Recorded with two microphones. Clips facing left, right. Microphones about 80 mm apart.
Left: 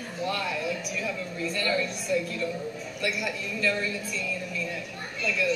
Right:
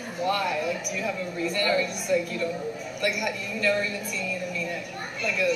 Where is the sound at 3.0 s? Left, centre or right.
Right.